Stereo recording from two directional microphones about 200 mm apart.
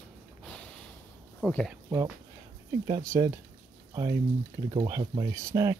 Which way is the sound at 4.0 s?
15° right (ahead or behind).